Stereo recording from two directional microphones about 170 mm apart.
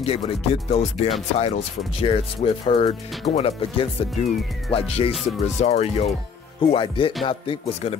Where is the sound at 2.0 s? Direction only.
30° left (ahead or behind).